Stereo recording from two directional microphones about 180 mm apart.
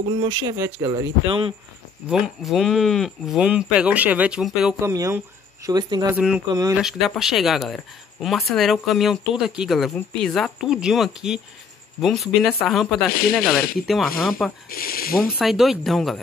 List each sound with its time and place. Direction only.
0.1 s speech: 25° right (ahead or behind)
1.2 s speech: 30° right (ahead or behind)
2.0 s speech: 5° right (ahead or behind)
4.7 s a man's voice: 15° right (ahead or behind)
6.1 s speech: 5° right (ahead or behind)
14.7 s speech: 55° left (ahead or behind)
15.3 s speech: centre (ahead or behind)